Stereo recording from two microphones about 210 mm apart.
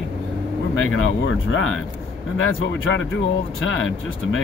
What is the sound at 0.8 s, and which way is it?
Speech, 70° left (ahead or behind).